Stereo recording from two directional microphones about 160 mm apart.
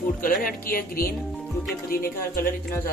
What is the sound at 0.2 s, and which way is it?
Speech, 60° left (ahead or behind).